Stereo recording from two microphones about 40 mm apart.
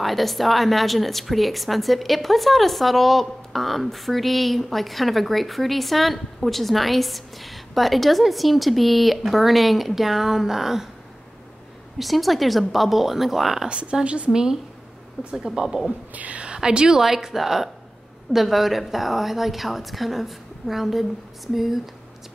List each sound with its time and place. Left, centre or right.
0.0 s a woman's voice: centre
12.0 s a woman's voice: centre
13.7 s a woman's voice: right
14.3 s a woman's voice: centre
16.1 s whispering: right
16.5 s a woman's voice: centre
17.0 s a woman's voice: centre